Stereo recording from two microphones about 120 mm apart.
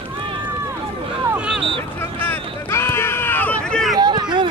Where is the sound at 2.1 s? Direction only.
20° left (ahead or behind).